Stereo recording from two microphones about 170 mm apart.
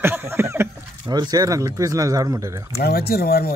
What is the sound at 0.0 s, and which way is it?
Speech, 15° right (ahead or behind).